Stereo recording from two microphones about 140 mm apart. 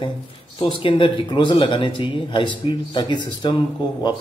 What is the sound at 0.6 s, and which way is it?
A man's voice, 40° left (ahead or behind).